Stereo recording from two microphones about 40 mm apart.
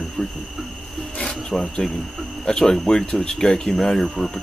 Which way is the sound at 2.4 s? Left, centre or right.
Centre.